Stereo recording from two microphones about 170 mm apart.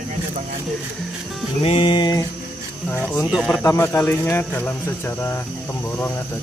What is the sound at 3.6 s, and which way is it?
Speech, 15° left (ahead or behind).